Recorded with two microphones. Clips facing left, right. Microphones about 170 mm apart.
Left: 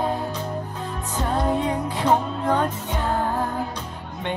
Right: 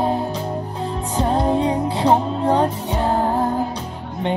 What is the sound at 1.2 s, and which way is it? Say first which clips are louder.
Music: right 4 dB; 30° right (ahead or behind).